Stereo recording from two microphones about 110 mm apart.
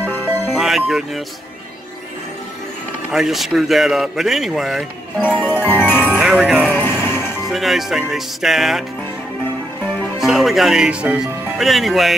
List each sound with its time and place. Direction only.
0.6 s speech: 5° right (ahead or behind)
3.1 s speech: 5° right (ahead or behind)
5.7 s music: 20° left (ahead or behind)
6.0 s music: 10° right (ahead or behind)
6.7 s music: 20° left (ahead or behind)
7.4 s speech: centre (ahead or behind)
10.1 s speech: centre (ahead or behind)